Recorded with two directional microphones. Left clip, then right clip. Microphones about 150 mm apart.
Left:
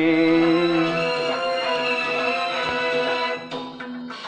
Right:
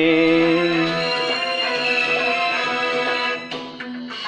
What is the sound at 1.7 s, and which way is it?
Music, centre (ahead or behind).